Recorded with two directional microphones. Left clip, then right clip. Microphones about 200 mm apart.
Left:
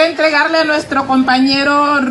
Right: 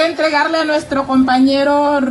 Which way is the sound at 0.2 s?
50° right (ahead or behind).